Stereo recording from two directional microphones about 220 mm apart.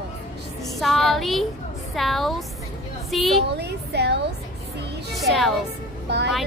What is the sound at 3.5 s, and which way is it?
Speech, 50° right (ahead or behind).